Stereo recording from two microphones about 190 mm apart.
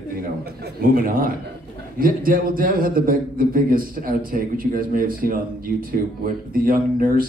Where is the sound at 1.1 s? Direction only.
50° right (ahead or behind).